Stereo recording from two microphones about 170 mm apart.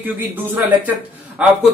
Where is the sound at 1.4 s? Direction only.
10° right (ahead or behind).